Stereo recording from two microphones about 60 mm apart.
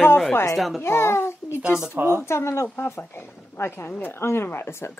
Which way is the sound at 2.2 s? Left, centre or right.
Left.